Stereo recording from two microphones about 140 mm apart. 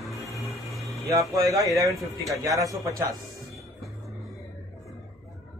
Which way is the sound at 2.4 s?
25° right (ahead or behind).